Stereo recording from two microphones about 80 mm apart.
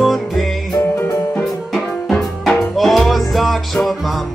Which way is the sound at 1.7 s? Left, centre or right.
Centre.